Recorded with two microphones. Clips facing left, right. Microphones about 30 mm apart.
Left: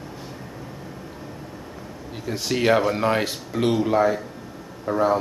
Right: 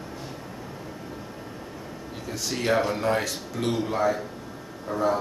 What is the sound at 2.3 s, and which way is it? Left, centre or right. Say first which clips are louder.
Speech: left 6 dB; left.